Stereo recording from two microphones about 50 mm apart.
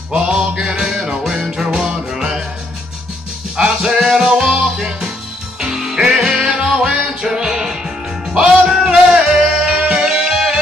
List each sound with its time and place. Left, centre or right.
0.1 s music: centre
0.8 s music: centre
3.6 s music: centre